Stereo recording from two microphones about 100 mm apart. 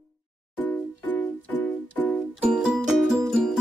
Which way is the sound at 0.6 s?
15° left (ahead or behind).